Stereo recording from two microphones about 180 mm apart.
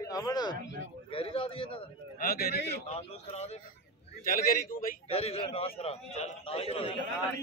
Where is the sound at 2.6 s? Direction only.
35° left (ahead or behind).